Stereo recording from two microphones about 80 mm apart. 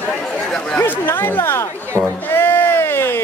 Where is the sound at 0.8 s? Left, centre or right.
Left.